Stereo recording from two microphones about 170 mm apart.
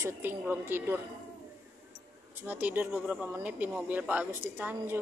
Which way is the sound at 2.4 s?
10° right (ahead or behind).